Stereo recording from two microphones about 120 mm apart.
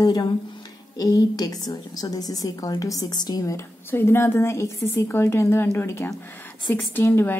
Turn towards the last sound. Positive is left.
turn(degrees=15)  # may be behind; listen again after turning